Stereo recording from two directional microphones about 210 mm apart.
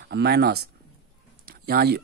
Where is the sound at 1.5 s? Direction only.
45° right (ahead or behind).